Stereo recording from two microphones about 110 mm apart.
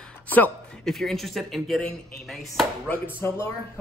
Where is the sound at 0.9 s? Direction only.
Centre (ahead or behind).